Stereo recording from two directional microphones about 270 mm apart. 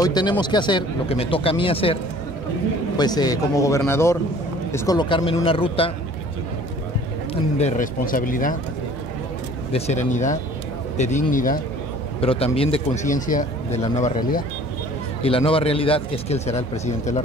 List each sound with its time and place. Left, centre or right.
0.0 s speech: centre
3.0 s speech: centre
7.5 s speech: left
9.7 s speech: left